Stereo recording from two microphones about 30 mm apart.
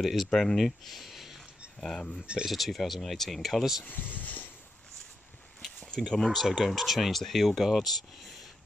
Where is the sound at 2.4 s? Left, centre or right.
Centre.